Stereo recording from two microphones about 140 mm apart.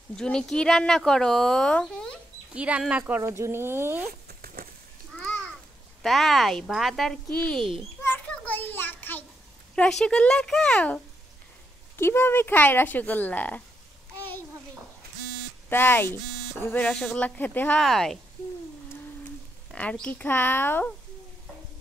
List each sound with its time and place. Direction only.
0.1 s speech: 5° left (ahead or behind)
2.5 s speech: 10° right (ahead or behind)
3.3 s speech: 20° right (ahead or behind)
4.3 s a sound: 90° right
5.1 s a sound: 10° left (ahead or behind)
6.0 s speech: centre (ahead or behind)
8.0 s children playing: 15° left (ahead or behind)
9.8 s speech: 5° left (ahead or behind)
12.0 s speech: 15° left (ahead or behind)
15.7 s speech: 15° left (ahead or behind)
19.7 s speech: 5° left (ahead or behind)